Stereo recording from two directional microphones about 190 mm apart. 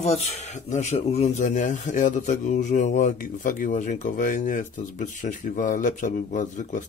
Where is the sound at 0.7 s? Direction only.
35° left (ahead or behind).